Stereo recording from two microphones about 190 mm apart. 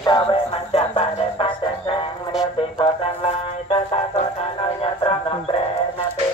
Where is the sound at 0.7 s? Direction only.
30° left (ahead or behind).